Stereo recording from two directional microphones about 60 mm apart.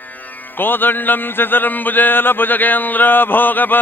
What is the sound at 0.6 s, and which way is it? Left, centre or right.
Mantra, left.